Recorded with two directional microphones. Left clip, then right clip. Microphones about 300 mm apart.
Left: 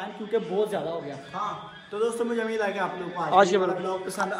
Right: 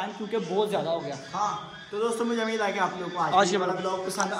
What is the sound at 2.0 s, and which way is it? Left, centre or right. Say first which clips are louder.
A man's voice: left 1 dB; centre.